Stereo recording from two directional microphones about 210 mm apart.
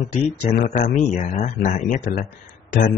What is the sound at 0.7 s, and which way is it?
Speech, 35° left (ahead or behind).